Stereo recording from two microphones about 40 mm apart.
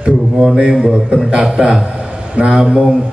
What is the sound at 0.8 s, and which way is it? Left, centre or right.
Speech, centre.